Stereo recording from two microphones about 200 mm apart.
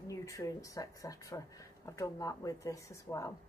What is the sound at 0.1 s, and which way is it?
Speech, 15° left (ahead or behind).